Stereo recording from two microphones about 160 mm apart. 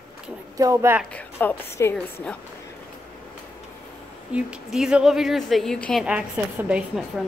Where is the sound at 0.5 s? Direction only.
20° right (ahead or behind).